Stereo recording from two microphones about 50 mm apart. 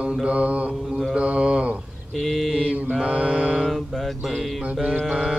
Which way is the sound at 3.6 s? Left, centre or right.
Centre.